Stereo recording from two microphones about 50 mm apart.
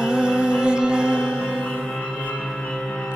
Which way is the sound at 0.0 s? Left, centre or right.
Centre.